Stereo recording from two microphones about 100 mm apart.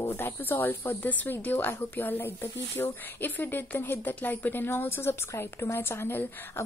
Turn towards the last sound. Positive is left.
turn(degrees=25)  # may be behind; listen again after turning